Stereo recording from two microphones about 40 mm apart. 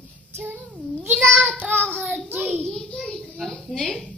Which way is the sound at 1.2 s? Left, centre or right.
Left.